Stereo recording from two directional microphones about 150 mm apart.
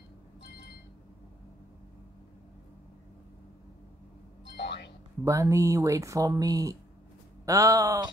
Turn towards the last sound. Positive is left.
turn(degrees=-20)  # may be behind; listen again after turning